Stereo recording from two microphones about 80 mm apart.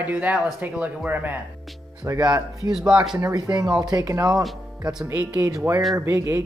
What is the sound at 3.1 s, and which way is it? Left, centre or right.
Speech, right.